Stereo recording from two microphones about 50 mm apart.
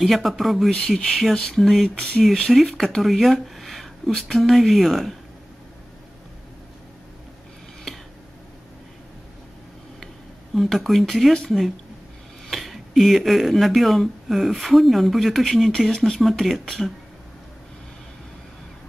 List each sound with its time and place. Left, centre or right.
0.0 s speech: centre
1.3 s speech: centre
1.6 s speech: centre
2.0 s speech: centre
2.5 s speech: centre
10.5 s speech: centre
12.4 s speech: centre